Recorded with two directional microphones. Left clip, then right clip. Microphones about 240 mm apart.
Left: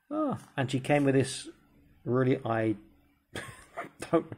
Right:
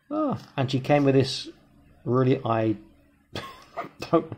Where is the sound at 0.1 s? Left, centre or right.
Centre.